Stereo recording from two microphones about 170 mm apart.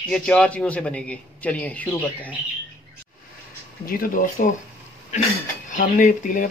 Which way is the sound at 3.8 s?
55° left (ahead or behind).